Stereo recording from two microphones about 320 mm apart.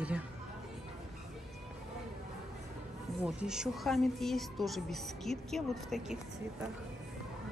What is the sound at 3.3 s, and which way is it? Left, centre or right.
A woman's voice, centre.